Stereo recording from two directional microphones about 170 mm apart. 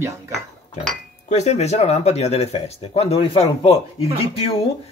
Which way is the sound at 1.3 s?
40° left (ahead or behind).